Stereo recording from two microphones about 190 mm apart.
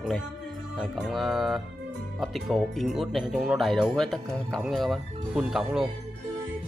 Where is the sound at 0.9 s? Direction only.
Centre (ahead or behind).